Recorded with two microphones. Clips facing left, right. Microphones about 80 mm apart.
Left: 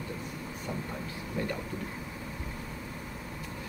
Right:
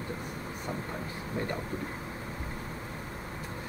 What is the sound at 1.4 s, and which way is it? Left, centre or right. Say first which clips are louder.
Speech: even; right.